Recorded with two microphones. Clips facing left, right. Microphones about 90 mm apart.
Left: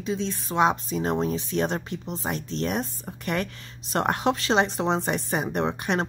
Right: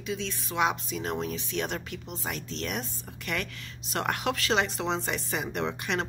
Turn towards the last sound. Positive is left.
turn(degrees=35)  # may be behind; listen again after turning